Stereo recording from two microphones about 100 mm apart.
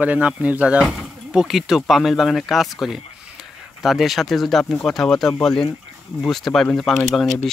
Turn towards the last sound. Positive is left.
turn(degrees=0)  # may be behind; listen again after turning